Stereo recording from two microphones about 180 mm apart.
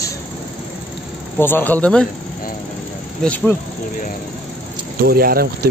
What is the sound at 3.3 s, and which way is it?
Speech, 10° left (ahead or behind).